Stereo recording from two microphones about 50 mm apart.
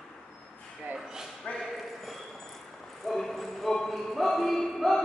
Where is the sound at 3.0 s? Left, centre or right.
Centre.